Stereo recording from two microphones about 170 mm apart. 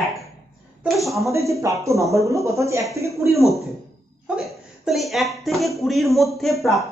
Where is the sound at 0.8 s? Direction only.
Centre (ahead or behind).